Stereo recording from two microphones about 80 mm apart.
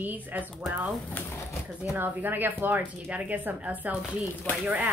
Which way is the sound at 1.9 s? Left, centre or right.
Right.